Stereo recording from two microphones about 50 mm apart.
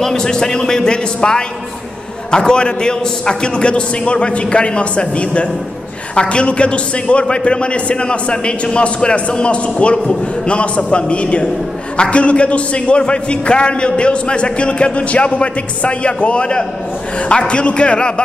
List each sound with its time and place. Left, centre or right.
0.0 s a man's voice: centre